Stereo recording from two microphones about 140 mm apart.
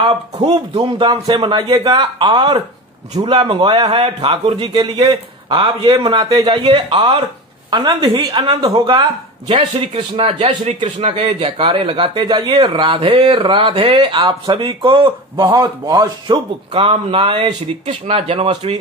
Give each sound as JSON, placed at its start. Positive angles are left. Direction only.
{"t": 0.0, "sound": "speech", "side_deg": -45}
{"t": 4.6, "sound": "speech", "side_deg": -35}
{"t": 11.2, "sound": "speech", "side_deg": -35}
{"t": 16.7, "sound": "speech", "side_deg": -45}